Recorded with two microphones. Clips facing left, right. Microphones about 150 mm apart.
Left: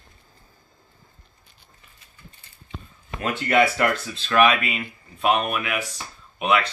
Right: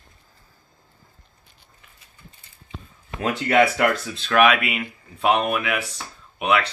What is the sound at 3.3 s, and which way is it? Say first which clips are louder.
Speech: right 2 dB; 10° right (ahead or behind).